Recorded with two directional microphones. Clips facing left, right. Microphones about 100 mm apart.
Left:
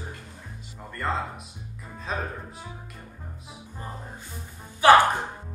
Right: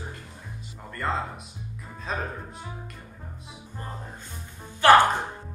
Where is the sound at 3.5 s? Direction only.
Centre (ahead or behind).